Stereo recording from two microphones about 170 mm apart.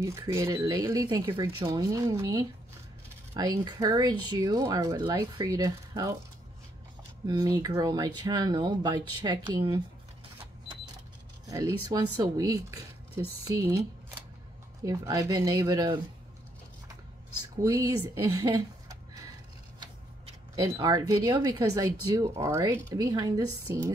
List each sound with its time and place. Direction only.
0.0 s speech: 20° right (ahead or behind)
7.2 s speech: 25° right (ahead or behind)
11.4 s speech: 20° right (ahead or behind)
14.9 s speech: 20° right (ahead or behind)
18.1 s a sound: 20° right (ahead or behind)
20.5 s speech: 20° right (ahead or behind)